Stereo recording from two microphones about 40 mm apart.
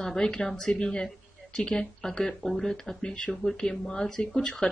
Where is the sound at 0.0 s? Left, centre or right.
Centre.